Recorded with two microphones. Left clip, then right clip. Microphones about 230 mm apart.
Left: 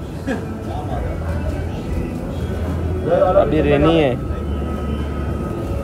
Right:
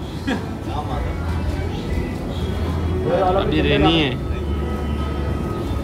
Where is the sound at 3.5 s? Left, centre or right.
Centre.